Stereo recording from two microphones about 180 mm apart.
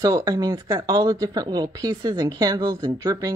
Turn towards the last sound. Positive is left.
turn(degrees=-20)  # may be behind; listen again after turning